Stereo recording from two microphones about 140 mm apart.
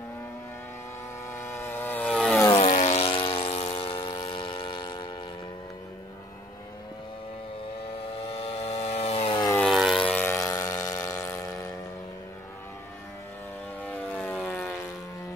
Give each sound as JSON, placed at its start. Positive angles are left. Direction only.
{"t": 1.3, "sound": "vehicle", "side_deg": 15}
{"t": 2.0, "sound": "vehicle", "side_deg": 0}
{"t": 2.6, "sound": "vehicle", "side_deg": 55}
{"t": 3.0, "sound": "vehicle", "side_deg": 40}
{"t": 8.1, "sound": "aircraft", "side_deg": 45}
{"t": 9.6, "sound": "vehicle", "side_deg": 0}
{"t": 10.0, "sound": "vehicle", "side_deg": 15}
{"t": 13.8, "sound": "vehicle", "side_deg": 10}